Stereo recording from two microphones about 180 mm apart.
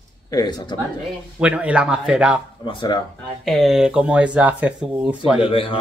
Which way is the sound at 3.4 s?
Centre (ahead or behind).